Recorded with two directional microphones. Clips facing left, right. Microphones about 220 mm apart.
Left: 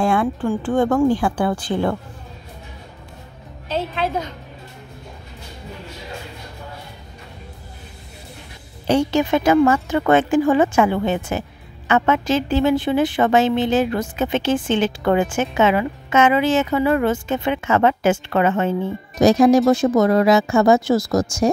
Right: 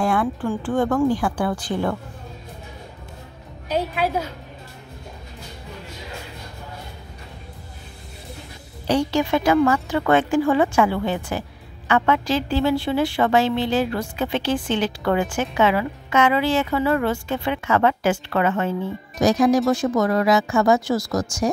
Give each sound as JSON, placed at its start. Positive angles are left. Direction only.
{"t": 0.0, "sound": "a sound", "side_deg": 25}
{"t": 0.5, "sound": "a woman's voice", "side_deg": 25}
{"t": 3.6, "sound": "a woman's voice", "side_deg": -15}
{"t": 8.8, "sound": "a woman's voice", "side_deg": 20}